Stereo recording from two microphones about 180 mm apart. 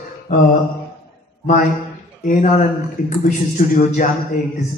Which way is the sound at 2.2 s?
45° left (ahead or behind).